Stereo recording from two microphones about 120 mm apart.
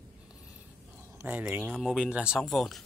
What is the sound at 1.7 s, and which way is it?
Speech, centre (ahead or behind).